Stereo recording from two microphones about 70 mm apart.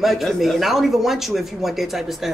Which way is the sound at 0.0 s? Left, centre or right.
Centre.